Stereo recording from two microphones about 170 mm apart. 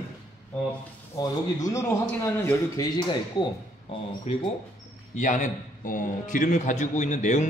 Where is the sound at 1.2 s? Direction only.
20° left (ahead or behind).